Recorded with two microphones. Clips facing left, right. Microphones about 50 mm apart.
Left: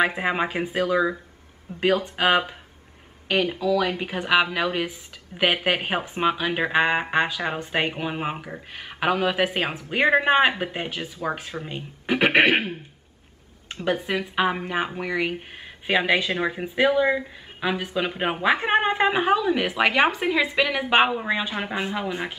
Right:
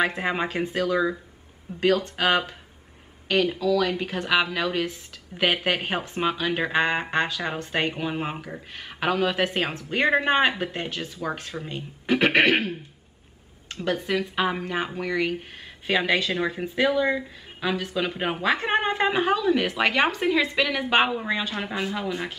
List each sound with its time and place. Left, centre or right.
0.0 s speech: centre
13.8 s speech: centre